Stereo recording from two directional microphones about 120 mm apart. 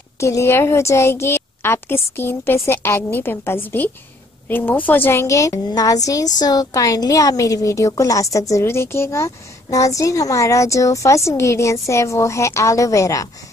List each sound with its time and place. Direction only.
0.2 s a woman's voice: 25° left (ahead or behind)